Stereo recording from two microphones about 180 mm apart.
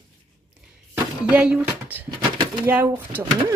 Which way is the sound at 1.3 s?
5° right (ahead or behind).